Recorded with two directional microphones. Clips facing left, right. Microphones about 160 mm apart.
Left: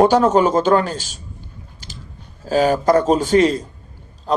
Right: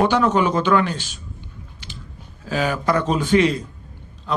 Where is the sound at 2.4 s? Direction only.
40° left (ahead or behind).